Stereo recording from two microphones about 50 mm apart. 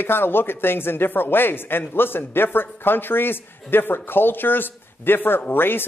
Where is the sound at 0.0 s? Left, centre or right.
Left.